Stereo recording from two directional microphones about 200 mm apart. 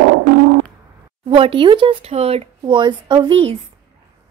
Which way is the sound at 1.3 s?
25° right (ahead or behind).